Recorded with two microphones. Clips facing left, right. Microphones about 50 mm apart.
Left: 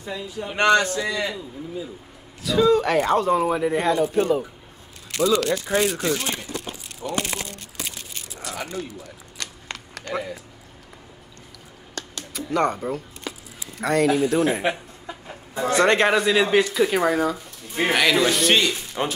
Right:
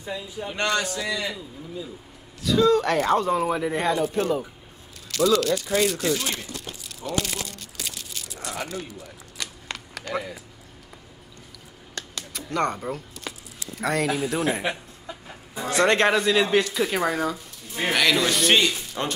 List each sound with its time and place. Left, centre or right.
0.0 s speech: centre
0.6 s a man's voice: left
1.2 s a man's voice: centre
5.1 s speech: left
5.7 s speech: left
6.1 s a sound: left
9.4 s a sound: centre
12.4 s a man's voice: centre
19.0 s a man's voice: centre